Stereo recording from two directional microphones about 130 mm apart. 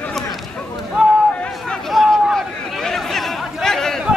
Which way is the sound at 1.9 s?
Centre (ahead or behind).